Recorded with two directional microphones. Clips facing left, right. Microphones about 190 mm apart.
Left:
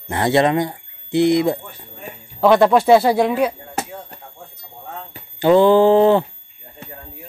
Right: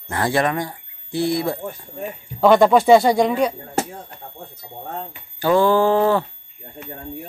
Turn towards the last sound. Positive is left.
turn(degrees=20)  # may be behind; listen again after turning